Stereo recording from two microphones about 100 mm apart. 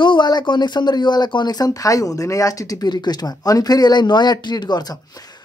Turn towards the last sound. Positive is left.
turn(degrees=45)  # may be behind; listen again after turning